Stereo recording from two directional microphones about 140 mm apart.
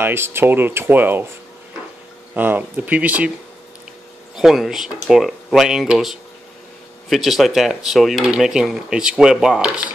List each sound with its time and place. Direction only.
0.0 s speech: 15° right (ahead or behind)
2.3 s speech: 15° right (ahead or behind)
4.4 s speech: 5° right (ahead or behind)